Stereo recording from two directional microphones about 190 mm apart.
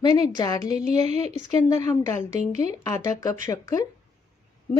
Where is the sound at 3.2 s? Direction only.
15° left (ahead or behind).